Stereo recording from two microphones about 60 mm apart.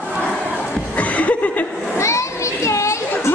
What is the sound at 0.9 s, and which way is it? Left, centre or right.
Chuckle, left.